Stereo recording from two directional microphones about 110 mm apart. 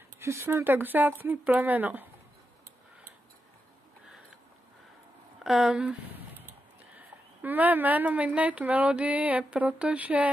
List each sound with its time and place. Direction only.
0.2 s a woman's voice: 25° right (ahead or behind)
5.4 s a woman's voice: 5° right (ahead or behind)